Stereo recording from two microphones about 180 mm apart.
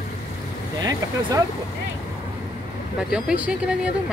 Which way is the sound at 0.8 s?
20° right (ahead or behind).